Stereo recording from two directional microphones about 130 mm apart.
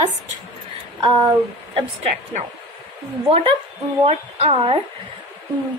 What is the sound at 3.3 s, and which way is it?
A woman's voice, 50° right (ahead or behind).